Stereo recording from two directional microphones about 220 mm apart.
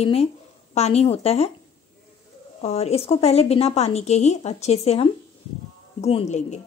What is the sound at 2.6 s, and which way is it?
A woman's voice, 30° left (ahead or behind).